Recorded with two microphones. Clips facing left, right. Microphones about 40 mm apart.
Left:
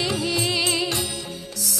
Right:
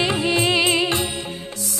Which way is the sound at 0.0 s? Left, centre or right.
Right.